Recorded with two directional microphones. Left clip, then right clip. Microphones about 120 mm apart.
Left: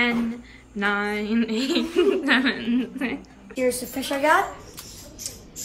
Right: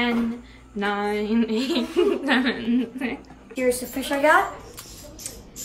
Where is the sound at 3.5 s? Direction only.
5° left (ahead or behind).